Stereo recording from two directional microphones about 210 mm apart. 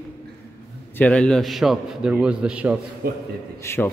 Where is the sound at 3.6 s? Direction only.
10° left (ahead or behind).